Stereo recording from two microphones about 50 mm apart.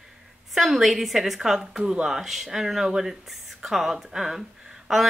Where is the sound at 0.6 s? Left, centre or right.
Centre.